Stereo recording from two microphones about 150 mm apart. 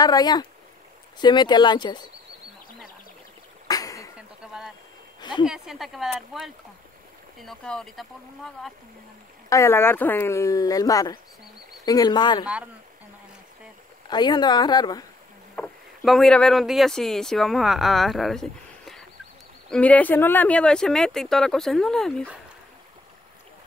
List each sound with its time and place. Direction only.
0.0 s speech: 25° left (ahead or behind)
3.6 s cough: 25° left (ahead or behind)
4.5 s a sound: 5° right (ahead or behind)
5.4 s speech: 5° right (ahead or behind)
9.5 s speech: 20° left (ahead or behind)
14.0 s speech: 30° left (ahead or behind)
15.5 s speech: 5° left (ahead or behind)